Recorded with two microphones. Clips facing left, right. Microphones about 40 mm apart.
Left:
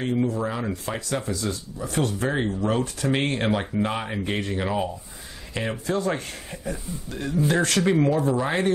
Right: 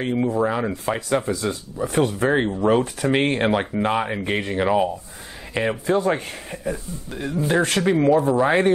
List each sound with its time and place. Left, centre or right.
0.0 s speech: right; by 8.2 s centre
8.4 s speech: right